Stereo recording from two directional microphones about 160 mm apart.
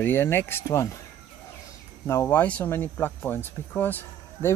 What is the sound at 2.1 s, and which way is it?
Speech, 15° left (ahead or behind).